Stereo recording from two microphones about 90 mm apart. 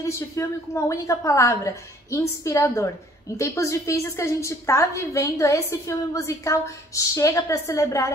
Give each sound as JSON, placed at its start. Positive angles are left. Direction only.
{"t": 0.0, "sound": "a woman's voice", "side_deg": 35}